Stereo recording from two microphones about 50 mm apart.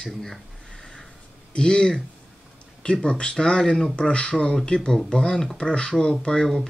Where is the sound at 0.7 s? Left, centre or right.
Centre.